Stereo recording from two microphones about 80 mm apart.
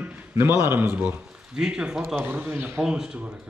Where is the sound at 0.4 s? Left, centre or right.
Right.